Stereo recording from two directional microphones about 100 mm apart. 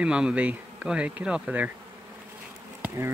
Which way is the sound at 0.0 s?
10° right (ahead or behind).